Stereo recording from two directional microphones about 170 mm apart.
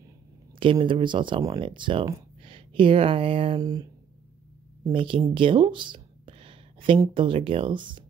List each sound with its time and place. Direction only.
0.6 s speech: 30° right (ahead or behind)
3.6 s speech: 20° right (ahead or behind)